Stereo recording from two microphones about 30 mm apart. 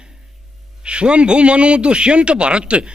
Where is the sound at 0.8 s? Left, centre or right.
Right.